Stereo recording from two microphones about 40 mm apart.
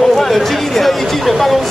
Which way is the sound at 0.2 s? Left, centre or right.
Centre.